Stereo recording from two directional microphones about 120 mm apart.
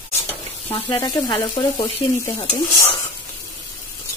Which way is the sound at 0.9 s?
35° left (ahead or behind).